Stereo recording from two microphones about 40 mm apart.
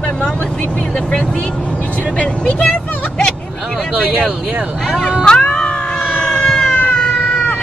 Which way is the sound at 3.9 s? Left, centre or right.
Right.